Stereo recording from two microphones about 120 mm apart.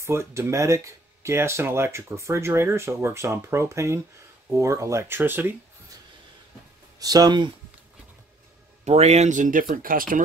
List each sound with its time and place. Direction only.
0.0 s speech: 25° right (ahead or behind)
7.0 s speech: 30° right (ahead or behind)
8.8 s speech: 65° right (ahead or behind); by 9.6 s 90° right